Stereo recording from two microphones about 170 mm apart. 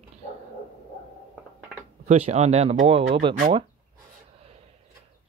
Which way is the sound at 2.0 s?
40° right (ahead or behind).